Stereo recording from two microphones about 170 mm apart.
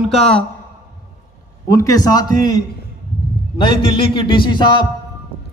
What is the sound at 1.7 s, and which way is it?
A man's voice, 20° left (ahead or behind).